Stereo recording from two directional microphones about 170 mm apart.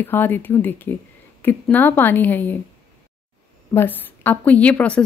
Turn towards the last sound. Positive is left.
turn(degrees=10)  # may be behind; listen again after turning